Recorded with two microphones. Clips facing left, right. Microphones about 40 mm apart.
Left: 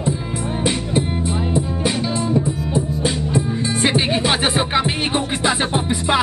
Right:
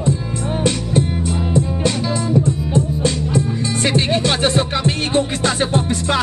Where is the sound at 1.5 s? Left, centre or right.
Centre.